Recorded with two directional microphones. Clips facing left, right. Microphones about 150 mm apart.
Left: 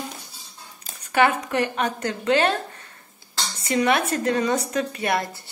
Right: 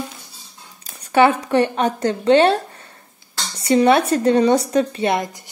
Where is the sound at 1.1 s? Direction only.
30° right (ahead or behind).